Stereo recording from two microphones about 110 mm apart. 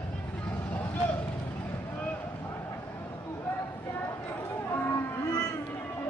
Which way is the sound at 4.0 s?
20° left (ahead or behind).